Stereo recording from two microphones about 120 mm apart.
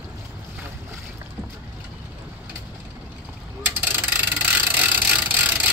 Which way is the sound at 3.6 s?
15° right (ahead or behind).